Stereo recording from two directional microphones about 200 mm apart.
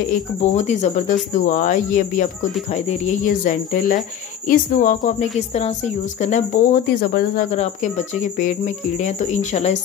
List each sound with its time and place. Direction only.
0.4 s speech: 35° left (ahead or behind)
7.5 s speech: 35° left (ahead or behind)